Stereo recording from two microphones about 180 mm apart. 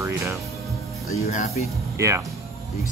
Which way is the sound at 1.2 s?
40° left (ahead or behind).